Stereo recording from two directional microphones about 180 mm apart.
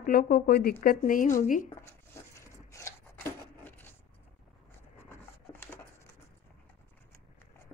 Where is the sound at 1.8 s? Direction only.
15° left (ahead or behind).